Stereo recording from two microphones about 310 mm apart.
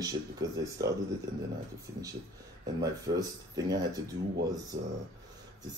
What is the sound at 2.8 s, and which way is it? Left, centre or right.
Speech, centre.